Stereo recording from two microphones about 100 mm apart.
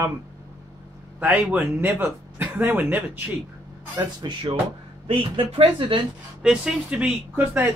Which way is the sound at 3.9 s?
50° right (ahead or behind).